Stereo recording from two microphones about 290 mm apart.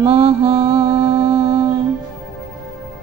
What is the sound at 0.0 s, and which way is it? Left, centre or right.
Mantra, centre.